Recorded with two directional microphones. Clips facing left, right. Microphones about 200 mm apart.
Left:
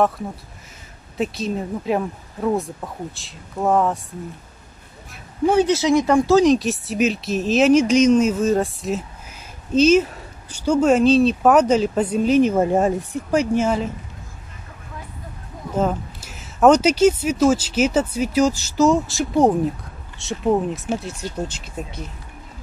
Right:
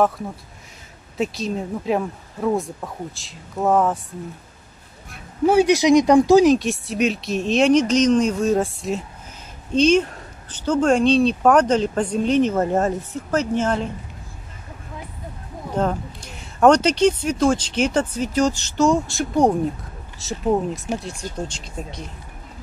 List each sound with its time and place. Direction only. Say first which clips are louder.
1.1 s speech: even; centre (ahead or behind)
5.1 s speech: right 1 dB; 10° right (ahead or behind)
6.4 s speech: even; centre (ahead or behind)
15.7 s speech: left 1 dB; 5° left (ahead or behind)